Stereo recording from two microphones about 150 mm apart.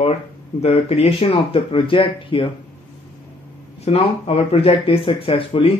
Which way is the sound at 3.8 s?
40° left (ahead or behind).